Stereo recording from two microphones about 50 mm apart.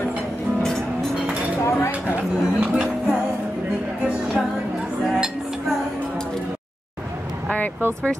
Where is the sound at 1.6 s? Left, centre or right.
Left.